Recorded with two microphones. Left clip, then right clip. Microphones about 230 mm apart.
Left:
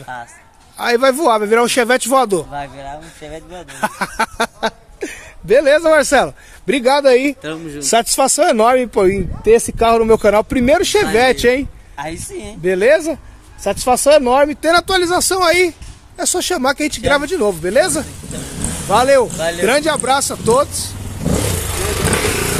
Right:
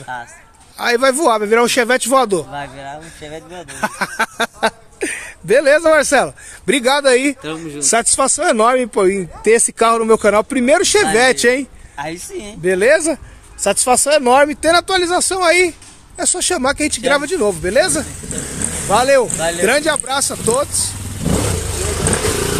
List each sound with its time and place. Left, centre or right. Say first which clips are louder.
0.1 s a man's voice: right 2 dB; centre
6.6 s speech: left 1 dB; centre
7.4 s a man's voice: right 1 dB; centre
9.4 s speech: left 1 dB; centre
9.8 s a man's voice: left 1 dB; centre
14.7 s a man's voice: even; centre
18.3 s speech: right 2 dB; right
18.9 s a man's voice: left 1 dB; centre
21.8 s vehicle: left 2 dB; left